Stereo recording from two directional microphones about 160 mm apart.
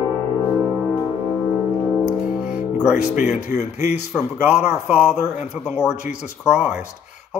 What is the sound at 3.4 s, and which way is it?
Speech, 45° left (ahead or behind).